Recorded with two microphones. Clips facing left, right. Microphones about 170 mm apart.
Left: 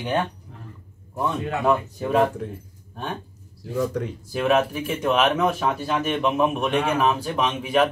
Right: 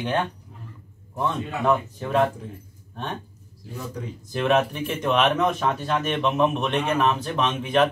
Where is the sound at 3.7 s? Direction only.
80° left.